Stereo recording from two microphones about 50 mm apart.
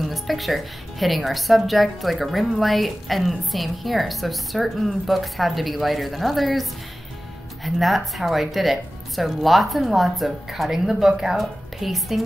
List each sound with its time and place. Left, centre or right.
0.0 s a woman's voice: centre